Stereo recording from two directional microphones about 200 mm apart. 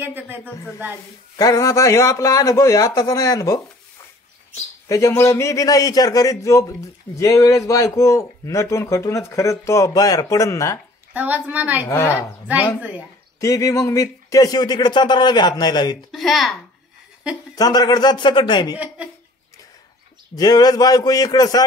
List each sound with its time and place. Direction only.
0.0 s speech: 10° right (ahead or behind)
1.3 s a man's voice: 15° left (ahead or behind)
4.8 s a man's voice: 15° left (ahead or behind)
11.1 s speech: 10° right (ahead or behind)
11.9 s a man's voice: 15° left (ahead or behind)
13.4 s speech: 15° left (ahead or behind)
16.1 s speech: centre (ahead or behind)
17.6 s speech: 20° left (ahead or behind)
20.3 s speech: 20° left (ahead or behind)